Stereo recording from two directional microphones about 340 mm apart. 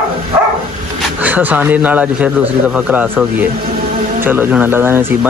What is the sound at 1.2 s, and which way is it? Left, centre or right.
A man's voice, centre.